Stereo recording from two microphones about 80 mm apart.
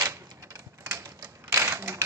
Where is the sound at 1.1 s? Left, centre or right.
Right.